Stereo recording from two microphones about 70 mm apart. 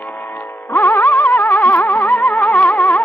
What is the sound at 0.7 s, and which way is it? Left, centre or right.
Music, left.